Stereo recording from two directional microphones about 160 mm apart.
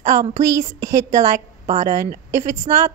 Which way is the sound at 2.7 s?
35° right (ahead or behind).